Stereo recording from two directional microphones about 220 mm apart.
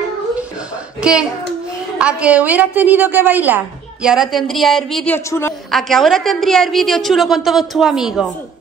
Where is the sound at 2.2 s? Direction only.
5° right (ahead or behind).